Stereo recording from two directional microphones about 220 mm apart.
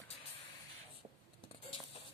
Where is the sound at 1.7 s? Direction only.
25° left (ahead or behind).